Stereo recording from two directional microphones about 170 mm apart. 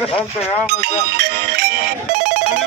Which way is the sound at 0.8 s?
70° right (ahead or behind).